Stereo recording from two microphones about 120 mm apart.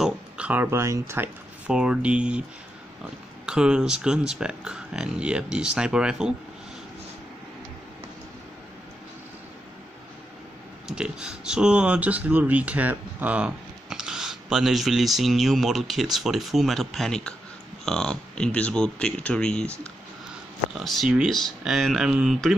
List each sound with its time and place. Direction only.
0.0 s speech: 10° right (ahead or behind)
1.7 s speech: 10° right (ahead or behind)
3.4 s speech: 5° right (ahead or behind)
10.9 s speech: 5° right (ahead or behind)